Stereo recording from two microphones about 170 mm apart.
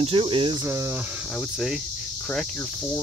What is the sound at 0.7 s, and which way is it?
Speech, 15° right (ahead or behind).